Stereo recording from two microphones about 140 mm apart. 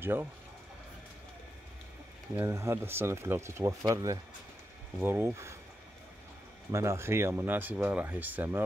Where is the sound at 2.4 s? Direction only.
20° right (ahead or behind).